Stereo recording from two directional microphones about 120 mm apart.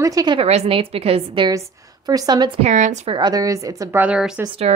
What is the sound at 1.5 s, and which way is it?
Speech, 30° right (ahead or behind).